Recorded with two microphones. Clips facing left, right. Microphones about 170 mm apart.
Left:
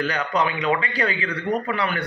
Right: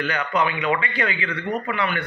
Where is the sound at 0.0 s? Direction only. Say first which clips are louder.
Even; 35° left (ahead or behind).